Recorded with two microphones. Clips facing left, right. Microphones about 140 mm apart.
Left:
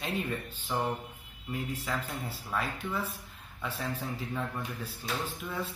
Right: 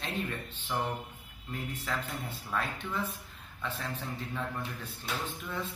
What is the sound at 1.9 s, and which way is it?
A man's voice, 5° left (ahead or behind).